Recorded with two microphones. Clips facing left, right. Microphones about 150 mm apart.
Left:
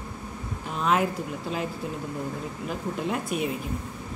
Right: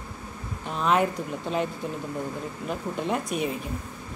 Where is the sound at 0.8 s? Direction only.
5° left (ahead or behind).